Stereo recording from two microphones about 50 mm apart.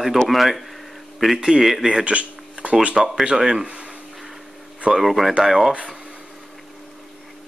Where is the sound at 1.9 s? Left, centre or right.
Right.